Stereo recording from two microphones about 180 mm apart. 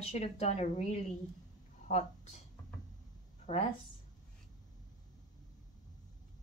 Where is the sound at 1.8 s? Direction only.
40° left (ahead or behind).